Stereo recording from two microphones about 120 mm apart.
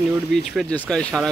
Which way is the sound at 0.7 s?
10° left (ahead or behind).